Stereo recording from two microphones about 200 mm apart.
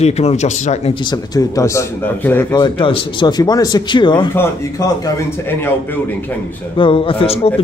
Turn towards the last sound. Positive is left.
turn(degrees=30)  # may be behind; listen again after turning